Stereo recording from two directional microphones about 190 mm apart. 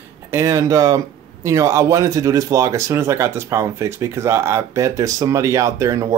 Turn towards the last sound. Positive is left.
turn(degrees=-15)  # may be behind; listen again after turning